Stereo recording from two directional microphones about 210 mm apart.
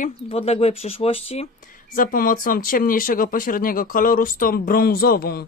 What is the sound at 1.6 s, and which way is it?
Speech, 40° left (ahead or behind).